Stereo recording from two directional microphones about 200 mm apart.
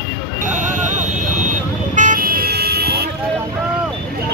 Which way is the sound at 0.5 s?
40° right (ahead or behind).